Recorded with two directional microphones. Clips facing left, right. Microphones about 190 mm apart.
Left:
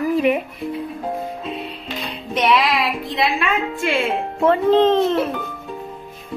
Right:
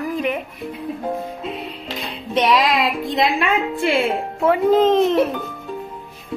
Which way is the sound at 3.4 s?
35° right (ahead or behind).